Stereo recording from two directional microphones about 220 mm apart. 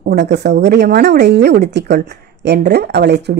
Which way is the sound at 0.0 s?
45° right (ahead or behind).